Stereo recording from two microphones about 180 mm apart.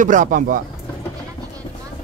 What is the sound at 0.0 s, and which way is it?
Speech, 45° right (ahead or behind).